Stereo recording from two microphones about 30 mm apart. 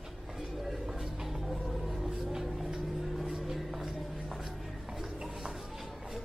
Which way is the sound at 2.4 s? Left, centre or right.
Centre.